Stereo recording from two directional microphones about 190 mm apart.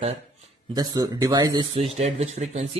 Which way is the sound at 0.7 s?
20° right (ahead or behind).